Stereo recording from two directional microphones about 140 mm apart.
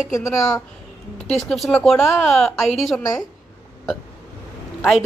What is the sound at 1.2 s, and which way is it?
A woman's voice, centre (ahead or behind).